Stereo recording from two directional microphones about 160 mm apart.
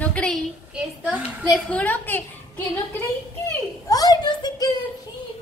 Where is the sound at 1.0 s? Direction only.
5° right (ahead or behind).